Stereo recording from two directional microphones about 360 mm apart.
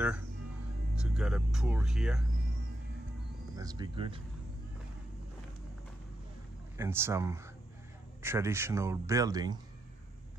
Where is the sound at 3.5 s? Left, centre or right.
Centre.